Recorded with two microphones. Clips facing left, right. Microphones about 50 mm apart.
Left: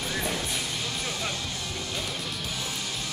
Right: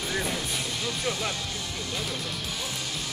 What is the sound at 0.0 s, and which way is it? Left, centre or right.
Music, centre.